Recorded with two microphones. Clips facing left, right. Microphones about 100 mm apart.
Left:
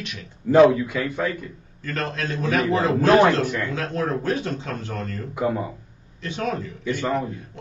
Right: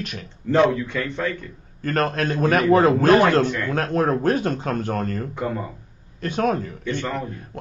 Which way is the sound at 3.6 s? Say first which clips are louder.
Right 4 dB; 50° right (ahead or behind).